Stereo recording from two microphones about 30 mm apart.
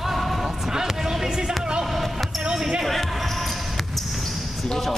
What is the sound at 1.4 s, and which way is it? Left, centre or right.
Music, right.